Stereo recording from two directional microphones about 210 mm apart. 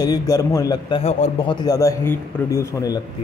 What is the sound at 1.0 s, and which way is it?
Speech, 25° left (ahead or behind).